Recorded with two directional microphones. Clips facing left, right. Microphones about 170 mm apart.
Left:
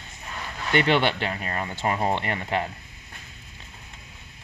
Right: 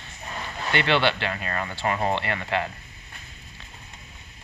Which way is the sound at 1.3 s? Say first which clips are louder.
Even; 20° left (ahead or behind).